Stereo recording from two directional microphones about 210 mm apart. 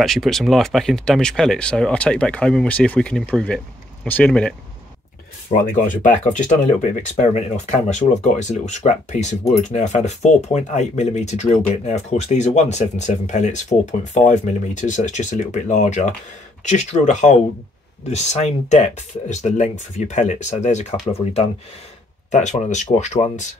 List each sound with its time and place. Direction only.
0.0 s speech: centre (ahead or behind)
5.9 s speech: 35° left (ahead or behind)